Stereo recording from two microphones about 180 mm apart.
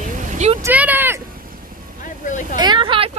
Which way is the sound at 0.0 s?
40° right (ahead or behind).